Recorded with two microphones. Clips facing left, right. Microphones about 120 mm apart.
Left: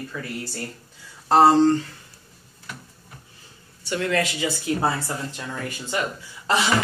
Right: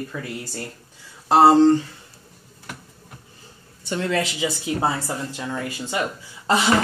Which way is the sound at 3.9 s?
20° right (ahead or behind).